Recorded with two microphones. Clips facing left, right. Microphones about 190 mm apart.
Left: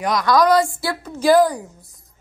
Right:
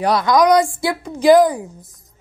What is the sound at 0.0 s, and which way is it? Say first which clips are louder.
Speech: right 4 dB; 30° right (ahead or behind).